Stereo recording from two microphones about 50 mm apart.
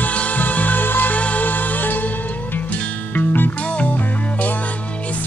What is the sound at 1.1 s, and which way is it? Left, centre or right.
Music, left.